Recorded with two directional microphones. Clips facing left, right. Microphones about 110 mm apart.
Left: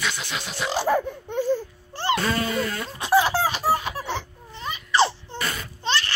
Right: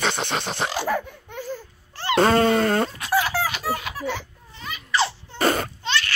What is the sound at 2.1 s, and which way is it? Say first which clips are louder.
Dog: right 12 dB; 50° right (ahead or behind).